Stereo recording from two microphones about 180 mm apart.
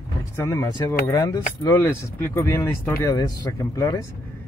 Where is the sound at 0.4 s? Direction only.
15° left (ahead or behind).